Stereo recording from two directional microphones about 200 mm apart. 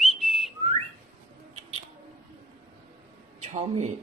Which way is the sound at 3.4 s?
35° right (ahead or behind).